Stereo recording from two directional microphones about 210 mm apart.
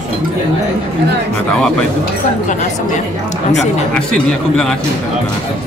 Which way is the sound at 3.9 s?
5° left (ahead or behind).